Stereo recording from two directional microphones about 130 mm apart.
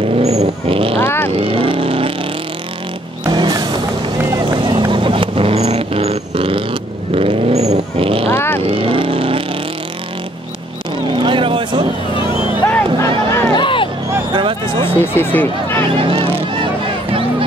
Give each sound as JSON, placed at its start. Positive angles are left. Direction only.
{"t": 0.2, "sound": "vehicle", "side_deg": -55}
{"t": 0.9, "sound": "vehicle", "side_deg": 15}
{"t": 1.4, "sound": "vehicle", "side_deg": -45}
{"t": 3.3, "sound": "vehicle", "side_deg": -30}
{"t": 8.3, "sound": "vehicle", "side_deg": 20}
{"t": 8.6, "sound": "vehicle", "side_deg": -45}
{"t": 11.1, "sound": "vehicle", "side_deg": -40}
{"t": 12.6, "sound": "a sound", "side_deg": 15}
{"t": 13.6, "sound": "a sound", "side_deg": 40}
{"t": 14.3, "sound": "a sound", "side_deg": -40}
{"t": 14.9, "sound": "a sound", "side_deg": 15}
{"t": 16.0, "sound": "vehicle", "side_deg": -45}